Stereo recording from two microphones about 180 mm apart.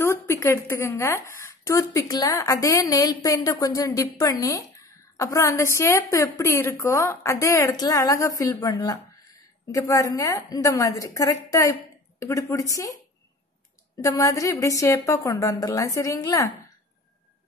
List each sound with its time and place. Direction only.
0.0 s a woman's voice: 15° left (ahead or behind)
14.0 s a woman's voice: 20° left (ahead or behind)